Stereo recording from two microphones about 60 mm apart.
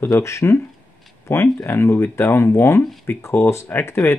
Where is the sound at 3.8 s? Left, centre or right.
Left.